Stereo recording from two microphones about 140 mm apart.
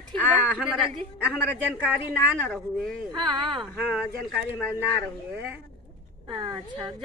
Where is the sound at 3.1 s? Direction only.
30° right (ahead or behind).